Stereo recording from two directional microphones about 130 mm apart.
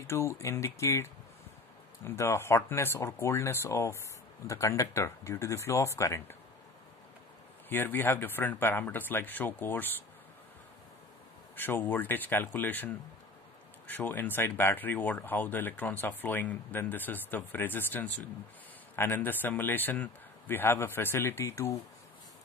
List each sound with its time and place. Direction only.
0.0 s speech: 20° left (ahead or behind)
2.0 s speech: 20° left (ahead or behind)
7.7 s speech: 15° left (ahead or behind)
11.5 s speech: 15° left (ahead or behind)